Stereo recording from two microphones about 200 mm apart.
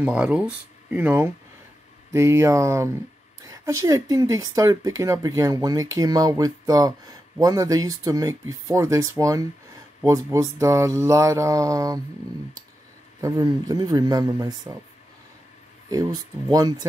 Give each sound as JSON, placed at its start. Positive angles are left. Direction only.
{"t": 0.0, "sound": "speech", "side_deg": -5}
{"t": 13.2, "sound": "speech", "side_deg": -20}
{"t": 15.9, "sound": "speech", "side_deg": -15}